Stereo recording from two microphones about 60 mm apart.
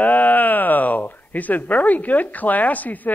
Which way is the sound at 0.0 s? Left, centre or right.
Left.